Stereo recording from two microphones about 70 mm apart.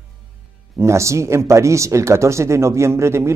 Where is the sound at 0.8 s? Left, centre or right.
Right.